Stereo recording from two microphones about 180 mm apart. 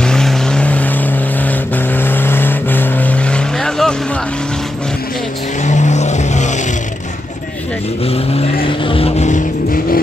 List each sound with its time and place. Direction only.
0.0 s vehicle: 5° left (ahead or behind)
5.6 s vehicle: 40° left (ahead or behind)
8.0 s speech: 35° left (ahead or behind)
8.6 s vehicle: 30° left (ahead or behind)